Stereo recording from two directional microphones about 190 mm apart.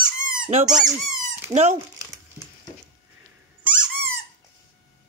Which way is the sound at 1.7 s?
15° right (ahead or behind).